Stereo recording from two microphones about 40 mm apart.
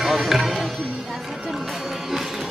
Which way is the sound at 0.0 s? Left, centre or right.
Centre.